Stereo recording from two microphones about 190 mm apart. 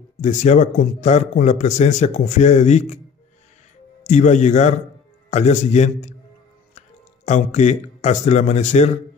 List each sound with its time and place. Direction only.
0.2 s a man's voice: 40° left (ahead or behind)
4.0 s a man's voice: 40° left (ahead or behind)
7.2 s a man's voice: 35° left (ahead or behind)